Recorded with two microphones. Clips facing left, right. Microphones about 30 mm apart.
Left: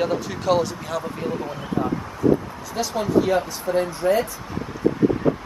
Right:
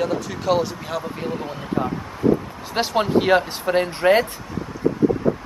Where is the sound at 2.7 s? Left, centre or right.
Right.